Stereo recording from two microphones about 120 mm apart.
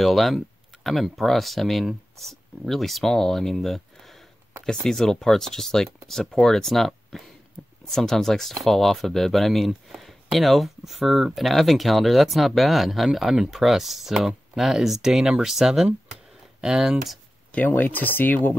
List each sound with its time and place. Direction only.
0.0 s speech: centre (ahead or behind)
17.5 s speech: 15° left (ahead or behind)